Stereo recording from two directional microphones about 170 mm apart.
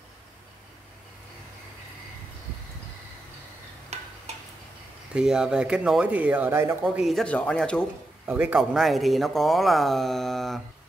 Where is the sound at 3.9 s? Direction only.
40° right (ahead or behind).